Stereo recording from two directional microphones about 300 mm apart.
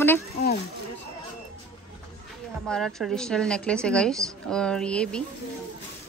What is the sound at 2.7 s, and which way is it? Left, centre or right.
A woman's voice, centre.